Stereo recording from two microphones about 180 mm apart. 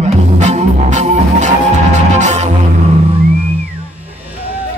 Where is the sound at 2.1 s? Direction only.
40° right (ahead or behind).